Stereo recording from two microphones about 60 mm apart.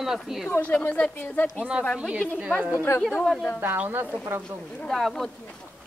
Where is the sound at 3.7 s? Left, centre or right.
Right.